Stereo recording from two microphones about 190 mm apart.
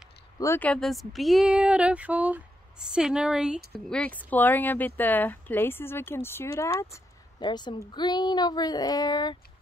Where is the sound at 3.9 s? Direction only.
5° left (ahead or behind).